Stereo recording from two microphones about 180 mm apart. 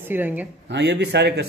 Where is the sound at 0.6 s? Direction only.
70° right (ahead or behind).